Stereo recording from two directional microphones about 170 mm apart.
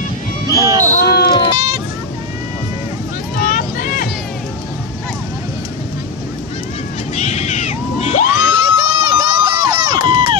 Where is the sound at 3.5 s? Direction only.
50° left (ahead or behind).